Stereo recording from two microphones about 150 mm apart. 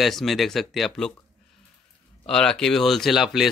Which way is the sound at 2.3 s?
5° left (ahead or behind).